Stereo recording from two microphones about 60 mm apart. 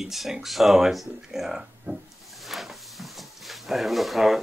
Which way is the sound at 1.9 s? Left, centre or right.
Right.